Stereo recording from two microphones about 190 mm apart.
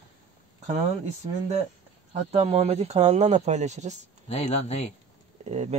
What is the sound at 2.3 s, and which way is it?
Speech, 35° right (ahead or behind).